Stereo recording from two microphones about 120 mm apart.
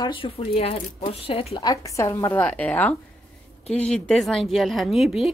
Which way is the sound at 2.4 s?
10° left (ahead or behind).